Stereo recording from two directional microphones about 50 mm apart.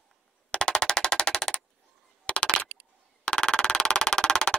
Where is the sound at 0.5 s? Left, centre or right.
Centre.